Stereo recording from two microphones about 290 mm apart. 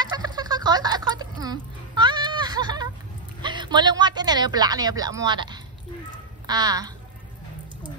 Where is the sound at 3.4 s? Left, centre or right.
Centre.